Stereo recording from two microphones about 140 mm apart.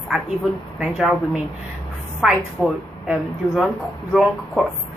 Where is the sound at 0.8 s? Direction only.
5° right (ahead or behind).